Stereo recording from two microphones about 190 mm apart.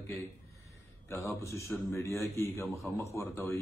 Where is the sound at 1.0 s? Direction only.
15° left (ahead or behind).